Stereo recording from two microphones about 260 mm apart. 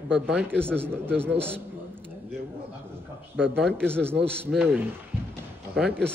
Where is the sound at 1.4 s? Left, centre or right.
Centre.